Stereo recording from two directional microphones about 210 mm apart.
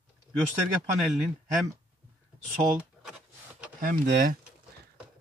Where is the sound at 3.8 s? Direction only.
40° right (ahead or behind).